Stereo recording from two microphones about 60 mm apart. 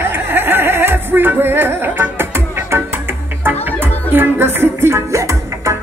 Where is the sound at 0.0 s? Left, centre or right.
Right.